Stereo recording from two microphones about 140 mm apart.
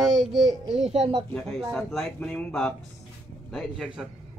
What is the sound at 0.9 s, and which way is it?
Speech, 45° right (ahead or behind).